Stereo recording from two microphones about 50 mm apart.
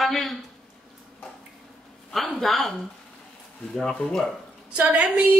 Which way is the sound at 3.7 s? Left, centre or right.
Centre.